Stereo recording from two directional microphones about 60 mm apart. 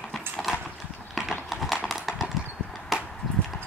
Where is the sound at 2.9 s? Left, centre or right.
Centre.